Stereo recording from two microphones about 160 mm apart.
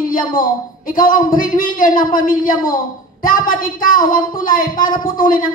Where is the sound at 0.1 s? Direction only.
60° left (ahead or behind).